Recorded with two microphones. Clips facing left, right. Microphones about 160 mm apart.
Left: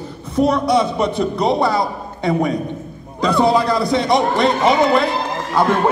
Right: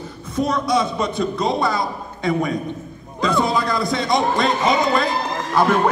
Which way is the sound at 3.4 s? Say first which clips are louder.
Left 7 dB; 30° left (ahead or behind).